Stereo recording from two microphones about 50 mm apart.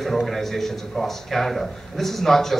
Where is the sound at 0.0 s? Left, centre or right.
Centre.